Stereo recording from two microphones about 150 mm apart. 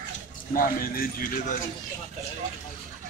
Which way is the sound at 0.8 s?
75° left (ahead or behind).